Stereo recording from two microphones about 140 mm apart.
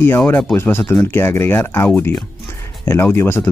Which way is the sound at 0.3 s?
15° left (ahead or behind).